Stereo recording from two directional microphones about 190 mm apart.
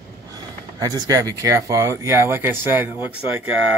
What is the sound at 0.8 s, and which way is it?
Speech, 20° right (ahead or behind).